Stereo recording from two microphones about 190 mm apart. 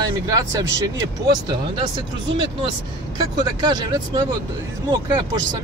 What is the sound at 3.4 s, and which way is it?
Speech, 20° right (ahead or behind).